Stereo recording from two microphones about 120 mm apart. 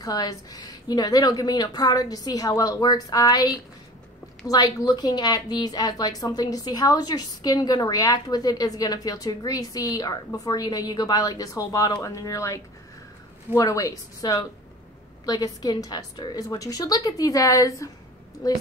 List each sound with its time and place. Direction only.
0.0 s a woman's voice: 30° left (ahead or behind)
13.6 s a woman's voice: 30° left (ahead or behind)